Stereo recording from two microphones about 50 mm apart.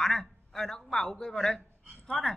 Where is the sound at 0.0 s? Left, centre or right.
Centre.